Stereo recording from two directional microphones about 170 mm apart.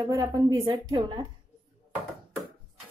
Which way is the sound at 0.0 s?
20° right (ahead or behind).